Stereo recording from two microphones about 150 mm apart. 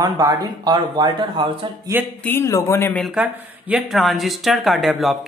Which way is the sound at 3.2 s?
10° right (ahead or behind).